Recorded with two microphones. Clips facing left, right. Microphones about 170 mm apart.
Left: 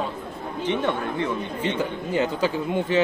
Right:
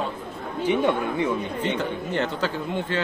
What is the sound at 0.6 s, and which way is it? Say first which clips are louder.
Speech: right 3 dB; 10° right (ahead or behind).